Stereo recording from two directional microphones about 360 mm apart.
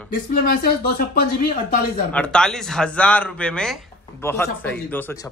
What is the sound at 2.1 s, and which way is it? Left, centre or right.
Speech, centre.